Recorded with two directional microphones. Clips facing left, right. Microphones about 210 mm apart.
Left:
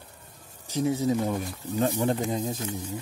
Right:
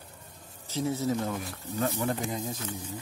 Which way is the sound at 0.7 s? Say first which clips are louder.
Left 4 dB; 15° left (ahead or behind).